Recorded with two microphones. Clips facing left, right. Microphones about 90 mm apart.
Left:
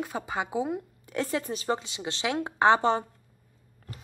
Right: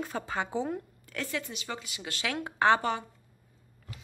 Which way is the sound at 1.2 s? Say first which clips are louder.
Left 6 dB; 35° left (ahead or behind).